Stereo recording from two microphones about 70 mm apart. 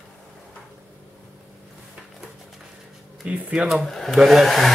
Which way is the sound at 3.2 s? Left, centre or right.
Centre.